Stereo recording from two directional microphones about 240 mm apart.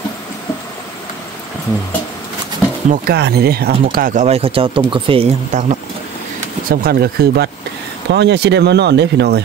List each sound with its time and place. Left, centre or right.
2.9 s speech: right
6.7 s speech: right